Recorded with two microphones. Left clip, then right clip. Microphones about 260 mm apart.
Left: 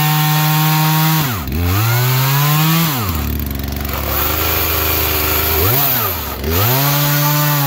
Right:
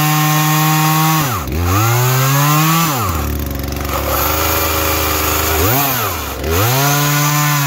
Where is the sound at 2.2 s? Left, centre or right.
Centre.